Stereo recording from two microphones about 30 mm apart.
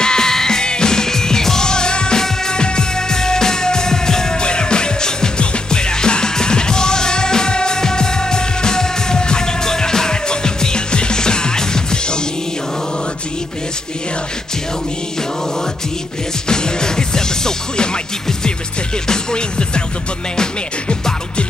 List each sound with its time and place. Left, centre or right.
0.0 s music: left
16.4 s music: left